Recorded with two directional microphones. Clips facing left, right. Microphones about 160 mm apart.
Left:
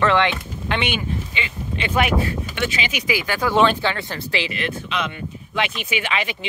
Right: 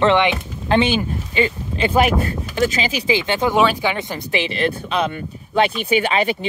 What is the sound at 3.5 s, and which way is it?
Speech, 10° right (ahead or behind).